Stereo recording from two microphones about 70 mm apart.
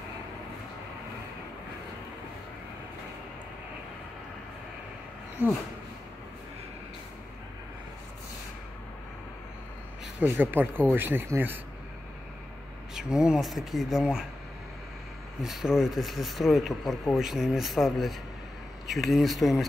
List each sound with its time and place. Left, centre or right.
10.4 s a man's voice: right
12.9 s speech: centre
15.4 s speech: centre